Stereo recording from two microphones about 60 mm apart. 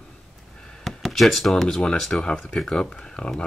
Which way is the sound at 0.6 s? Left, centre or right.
Centre.